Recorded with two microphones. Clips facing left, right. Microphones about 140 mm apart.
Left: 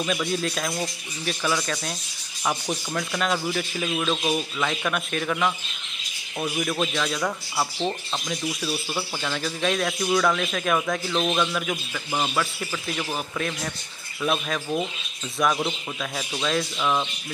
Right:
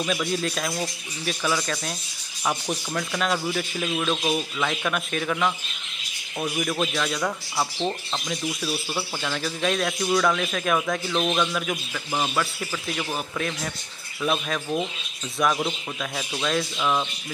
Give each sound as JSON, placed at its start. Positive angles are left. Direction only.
{"t": 0.0, "sound": "speech", "side_deg": 0}